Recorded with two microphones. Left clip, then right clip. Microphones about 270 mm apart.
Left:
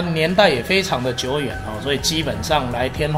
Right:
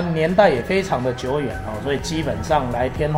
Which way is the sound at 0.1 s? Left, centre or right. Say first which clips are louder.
Even; left.